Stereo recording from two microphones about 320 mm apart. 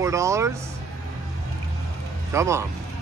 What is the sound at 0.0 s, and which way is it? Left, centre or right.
Speech, centre.